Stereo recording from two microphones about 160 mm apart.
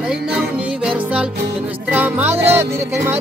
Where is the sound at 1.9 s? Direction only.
10° right (ahead or behind).